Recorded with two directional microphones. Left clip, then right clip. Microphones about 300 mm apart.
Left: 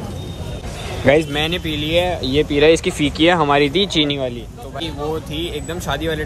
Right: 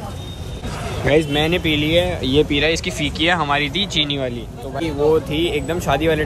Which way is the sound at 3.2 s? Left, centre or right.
Centre.